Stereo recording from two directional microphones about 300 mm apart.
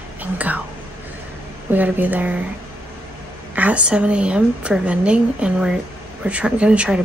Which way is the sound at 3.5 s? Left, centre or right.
Centre.